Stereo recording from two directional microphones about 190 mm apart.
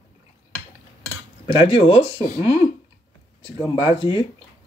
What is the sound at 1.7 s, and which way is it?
Speech, 25° left (ahead or behind).